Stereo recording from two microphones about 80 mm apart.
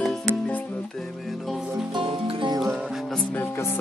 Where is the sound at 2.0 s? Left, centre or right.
Right.